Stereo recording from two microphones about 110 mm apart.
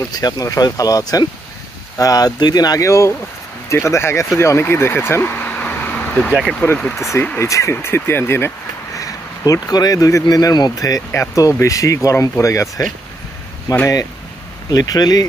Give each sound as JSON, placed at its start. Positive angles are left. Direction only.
{"t": 0.1, "sound": "speech", "side_deg": 35}
{"t": 7.3, "sound": "speech", "side_deg": 30}